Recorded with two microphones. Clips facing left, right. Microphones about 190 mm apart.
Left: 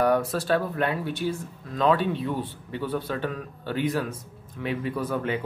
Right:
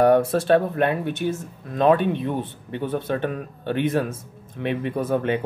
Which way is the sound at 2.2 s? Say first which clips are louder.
Right 3 dB; 20° right (ahead or behind).